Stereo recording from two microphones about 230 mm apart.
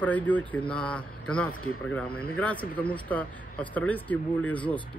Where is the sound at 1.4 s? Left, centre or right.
Left.